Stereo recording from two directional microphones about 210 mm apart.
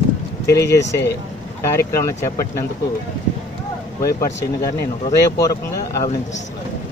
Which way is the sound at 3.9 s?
15° left (ahead or behind).